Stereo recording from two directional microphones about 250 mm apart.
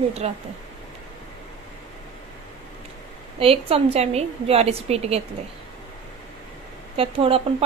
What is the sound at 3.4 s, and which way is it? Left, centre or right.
A woman's voice, right.